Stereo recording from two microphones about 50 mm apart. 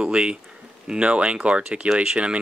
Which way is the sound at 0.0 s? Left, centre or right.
Centre.